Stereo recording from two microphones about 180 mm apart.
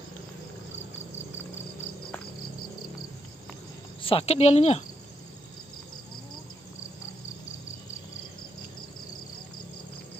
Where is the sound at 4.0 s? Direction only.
30° left (ahead or behind).